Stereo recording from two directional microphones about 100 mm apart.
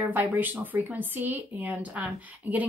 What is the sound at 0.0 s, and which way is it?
A woman's voice, 20° right (ahead or behind).